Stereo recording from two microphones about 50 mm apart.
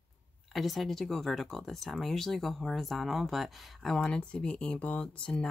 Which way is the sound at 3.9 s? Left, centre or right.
Centre.